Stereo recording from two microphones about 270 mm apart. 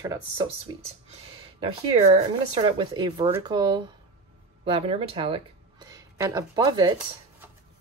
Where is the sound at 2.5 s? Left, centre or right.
Centre.